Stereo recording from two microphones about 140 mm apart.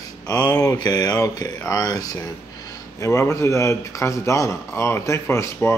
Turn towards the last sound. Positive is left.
turn(degrees=20)  # may be behind; listen again after turning